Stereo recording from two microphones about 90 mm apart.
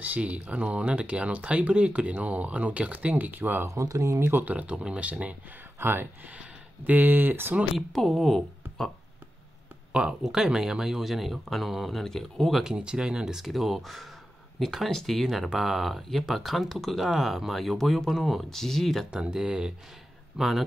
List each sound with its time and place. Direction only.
0.1 s speech: 15° right (ahead or behind)
3.7 s speech: 35° right (ahead or behind)
7.7 s speech: centre (ahead or behind)
9.9 s speech: 10° right (ahead or behind)
12.6 s speech: 10° right (ahead or behind)
19.0 s speech: 10° right (ahead or behind)